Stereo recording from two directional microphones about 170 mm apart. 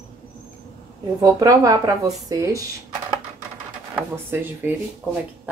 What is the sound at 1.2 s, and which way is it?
Speech, 20° right (ahead or behind).